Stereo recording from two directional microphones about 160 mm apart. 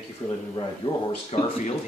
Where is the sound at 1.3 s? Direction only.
40° left (ahead or behind).